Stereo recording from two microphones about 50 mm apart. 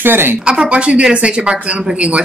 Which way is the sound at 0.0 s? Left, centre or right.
Right.